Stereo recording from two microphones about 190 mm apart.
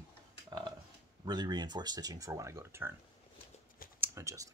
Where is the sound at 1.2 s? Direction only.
20° right (ahead or behind).